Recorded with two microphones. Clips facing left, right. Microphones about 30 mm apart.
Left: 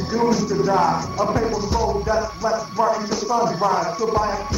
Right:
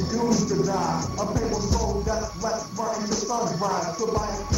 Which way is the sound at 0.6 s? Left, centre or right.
Left.